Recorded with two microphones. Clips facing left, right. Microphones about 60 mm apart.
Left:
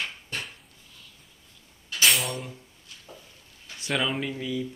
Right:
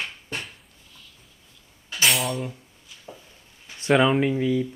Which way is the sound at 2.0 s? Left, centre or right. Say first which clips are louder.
Right 2 dB; centre.